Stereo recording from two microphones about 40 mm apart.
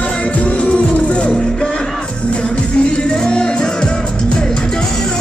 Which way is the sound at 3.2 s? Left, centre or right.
Left.